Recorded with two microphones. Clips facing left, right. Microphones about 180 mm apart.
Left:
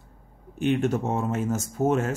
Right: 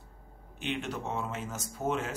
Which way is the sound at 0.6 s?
45° left (ahead or behind).